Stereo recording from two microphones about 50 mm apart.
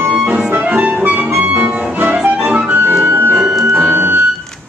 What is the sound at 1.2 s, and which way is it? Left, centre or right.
Music, centre.